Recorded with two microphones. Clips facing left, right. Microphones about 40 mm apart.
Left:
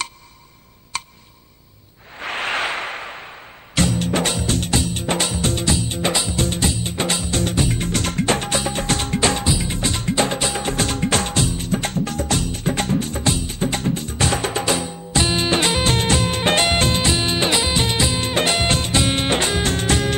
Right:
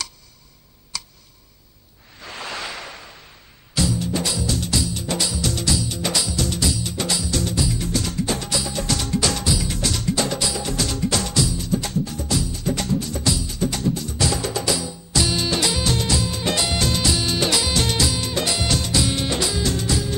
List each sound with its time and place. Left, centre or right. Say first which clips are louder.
0.9 s tick: left 6 dB; left
2.1 s music: left 8 dB; left